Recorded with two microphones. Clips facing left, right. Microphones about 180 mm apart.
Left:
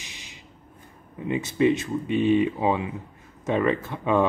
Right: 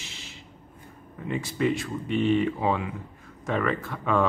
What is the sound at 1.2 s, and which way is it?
Speech, 20° left (ahead or behind).